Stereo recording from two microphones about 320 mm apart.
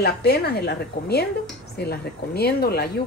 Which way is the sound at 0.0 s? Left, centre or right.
Left.